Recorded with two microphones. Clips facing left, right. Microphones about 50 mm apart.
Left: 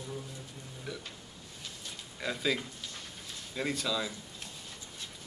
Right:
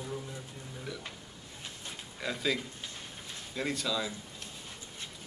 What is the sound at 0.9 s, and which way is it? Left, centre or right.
Speech, centre.